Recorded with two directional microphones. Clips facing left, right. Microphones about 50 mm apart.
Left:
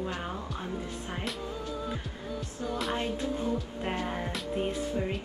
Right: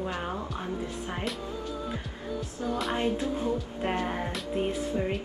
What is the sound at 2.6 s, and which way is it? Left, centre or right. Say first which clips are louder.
Speech: right 2 dB; centre.